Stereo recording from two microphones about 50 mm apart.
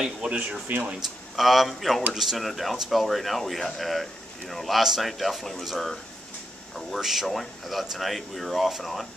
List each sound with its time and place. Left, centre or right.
0.0 s speech: centre
0.7 s speech: right
1.0 s speech: centre